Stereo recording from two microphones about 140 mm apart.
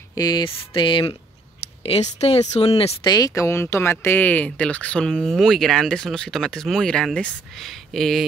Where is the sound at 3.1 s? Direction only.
25° left (ahead or behind).